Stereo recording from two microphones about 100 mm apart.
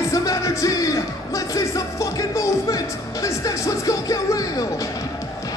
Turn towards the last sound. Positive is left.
turn(degrees=35)  # may be behind; listen again after turning